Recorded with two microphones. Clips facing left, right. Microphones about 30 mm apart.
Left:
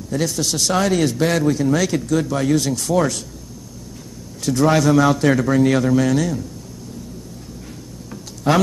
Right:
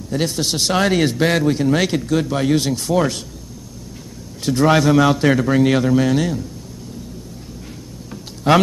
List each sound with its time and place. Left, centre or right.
0.2 s a man's voice: right
4.4 s a man's voice: right
8.5 s a man's voice: right